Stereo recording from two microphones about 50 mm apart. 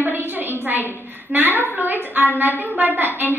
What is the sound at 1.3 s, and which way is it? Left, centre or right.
A woman's voice, right.